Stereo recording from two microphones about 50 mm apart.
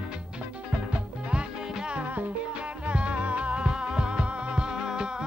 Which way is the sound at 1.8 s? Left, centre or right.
Centre.